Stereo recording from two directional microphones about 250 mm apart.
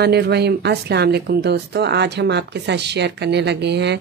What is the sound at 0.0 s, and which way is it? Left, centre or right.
Speech, right.